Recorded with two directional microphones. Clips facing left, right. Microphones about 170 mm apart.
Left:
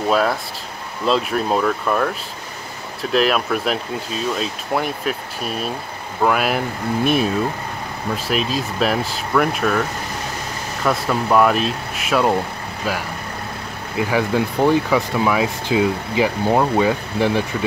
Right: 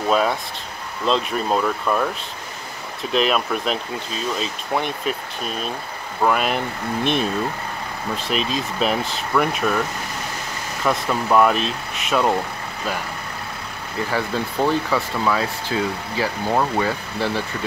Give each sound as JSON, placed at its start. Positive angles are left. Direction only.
{"t": 0.1, "sound": "speech", "side_deg": 0}
{"t": 13.9, "sound": "speech", "side_deg": 15}